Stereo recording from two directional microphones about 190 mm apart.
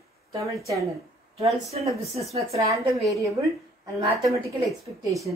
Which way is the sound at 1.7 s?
35° right (ahead or behind).